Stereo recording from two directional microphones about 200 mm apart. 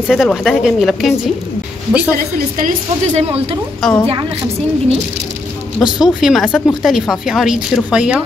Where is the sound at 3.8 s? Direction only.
5° left (ahead or behind).